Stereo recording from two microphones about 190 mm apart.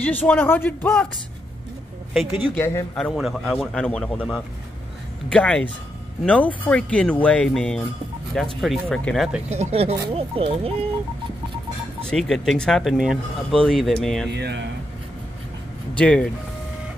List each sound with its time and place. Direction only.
0.0 s speech: 10° left (ahead or behind)
2.5 s speech: 15° left (ahead or behind)
3.0 s speech: centre (ahead or behind)
9.5 s speech: 35° right (ahead or behind)
12.0 s speech: 5° left (ahead or behind)
14.3 s speech: 65° right (ahead or behind)
15.9 s speech: 5° left (ahead or behind)